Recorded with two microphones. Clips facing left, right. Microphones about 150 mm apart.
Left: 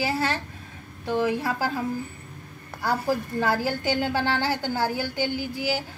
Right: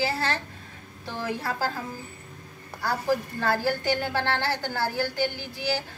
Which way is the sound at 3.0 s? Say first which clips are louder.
Right 2 dB; 15° left (ahead or behind).